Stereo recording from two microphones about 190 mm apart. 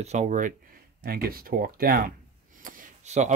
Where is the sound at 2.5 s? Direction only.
45° right (ahead or behind).